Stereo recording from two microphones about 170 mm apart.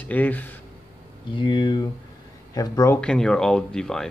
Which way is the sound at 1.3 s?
30° left (ahead or behind).